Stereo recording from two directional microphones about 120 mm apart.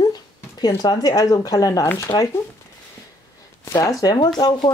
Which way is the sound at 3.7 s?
30° left (ahead or behind).